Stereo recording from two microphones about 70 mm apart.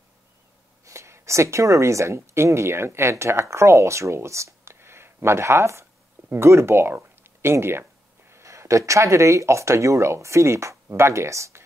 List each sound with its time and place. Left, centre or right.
0.8 s speech: right